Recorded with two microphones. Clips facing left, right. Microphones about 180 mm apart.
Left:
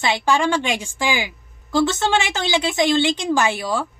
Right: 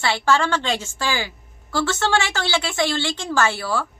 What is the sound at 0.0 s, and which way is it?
A woman's voice, 15° left (ahead or behind).